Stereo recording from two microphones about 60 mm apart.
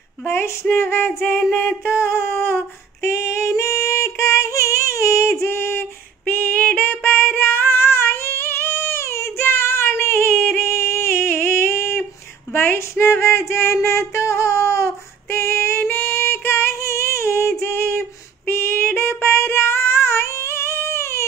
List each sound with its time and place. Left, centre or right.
0.3 s a sound: left
3.1 s female singing: left
6.2 s female singing: left
12.5 s a sound: left
13.8 s female singing: left
18.5 s child singing: left